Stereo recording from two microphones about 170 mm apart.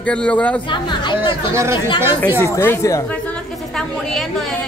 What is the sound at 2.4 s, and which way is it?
Speech, 15° left (ahead or behind).